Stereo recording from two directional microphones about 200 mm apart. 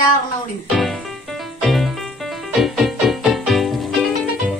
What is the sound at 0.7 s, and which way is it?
Music, centre (ahead or behind).